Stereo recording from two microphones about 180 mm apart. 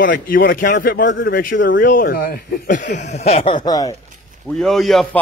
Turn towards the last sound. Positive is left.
turn(degrees=0)  # may be behind; listen again after turning